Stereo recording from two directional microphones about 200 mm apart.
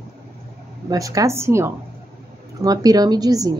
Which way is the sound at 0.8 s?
15° right (ahead or behind).